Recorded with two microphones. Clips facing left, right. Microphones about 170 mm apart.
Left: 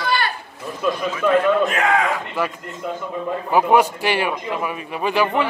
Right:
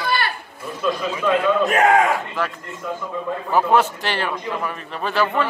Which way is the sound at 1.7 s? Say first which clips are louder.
Right 4 dB; 45° right (ahead or behind).